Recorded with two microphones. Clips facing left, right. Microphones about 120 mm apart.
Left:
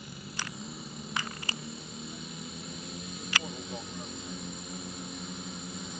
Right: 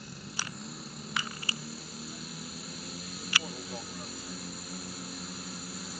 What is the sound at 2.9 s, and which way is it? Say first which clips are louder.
Vehicle: left 2 dB; 5° right (ahead or behind).